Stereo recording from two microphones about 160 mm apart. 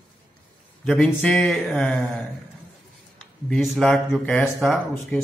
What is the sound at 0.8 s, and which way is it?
A man's voice, 5° left (ahead or behind).